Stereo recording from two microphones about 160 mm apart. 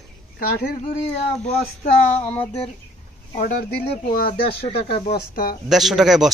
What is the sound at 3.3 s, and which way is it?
Speech, 65° left (ahead or behind).